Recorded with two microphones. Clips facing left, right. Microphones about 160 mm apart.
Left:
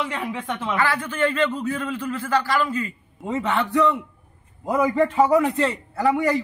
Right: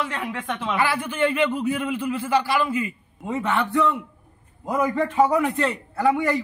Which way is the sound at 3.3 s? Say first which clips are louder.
Left 1 dB; centre (ahead or behind).